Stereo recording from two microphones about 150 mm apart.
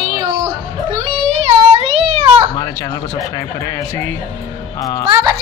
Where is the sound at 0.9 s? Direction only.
40° right (ahead or behind).